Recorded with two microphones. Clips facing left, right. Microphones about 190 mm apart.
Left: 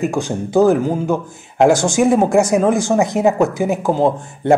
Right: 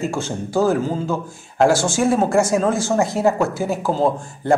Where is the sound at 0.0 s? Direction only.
15° left (ahead or behind).